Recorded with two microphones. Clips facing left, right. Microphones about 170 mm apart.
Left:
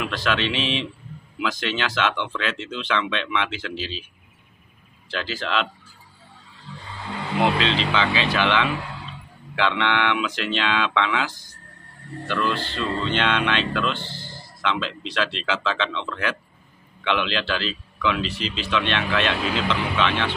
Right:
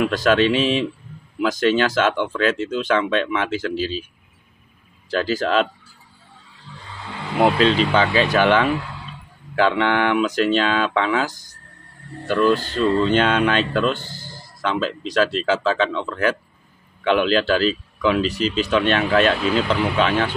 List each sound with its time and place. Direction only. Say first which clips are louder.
0.0 s speech: right 8 dB; 45° right (ahead or behind)
5.1 s speech: right 7 dB; 40° right (ahead or behind)
7.5 s speech: right 6 dB; 45° right (ahead or behind)